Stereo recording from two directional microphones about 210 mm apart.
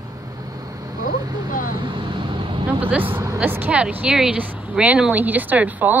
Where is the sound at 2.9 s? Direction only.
10° right (ahead or behind).